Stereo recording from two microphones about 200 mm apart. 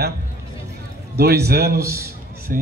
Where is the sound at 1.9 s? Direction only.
50° right (ahead or behind).